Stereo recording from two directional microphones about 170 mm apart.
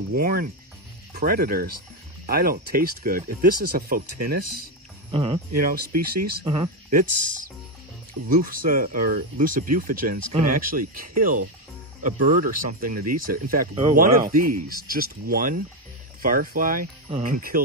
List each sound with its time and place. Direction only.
0.1 s speech: 60° right (ahead or behind)
5.1 s speech: 30° right (ahead or behind)
5.5 s speech: 60° right (ahead or behind)
6.4 s speech: 35° right (ahead or behind)
6.9 s speech: 55° right (ahead or behind)